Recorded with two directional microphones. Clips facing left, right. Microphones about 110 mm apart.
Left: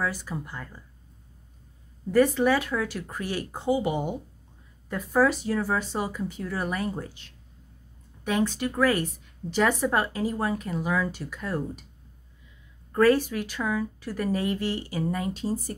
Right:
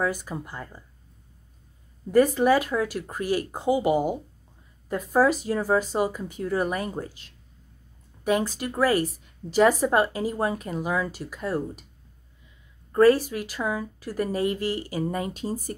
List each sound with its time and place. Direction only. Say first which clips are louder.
0.0 s speech: right 3 dB; 15° right (ahead or behind)
2.1 s speech: right 2 dB; 15° right (ahead or behind)
8.2 s speech: right 1 dB; 10° right (ahead or behind)
12.9 s speech: right 3 dB; 10° right (ahead or behind)